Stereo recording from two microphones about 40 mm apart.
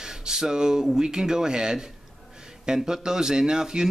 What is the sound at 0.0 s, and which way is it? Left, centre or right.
Speech, centre.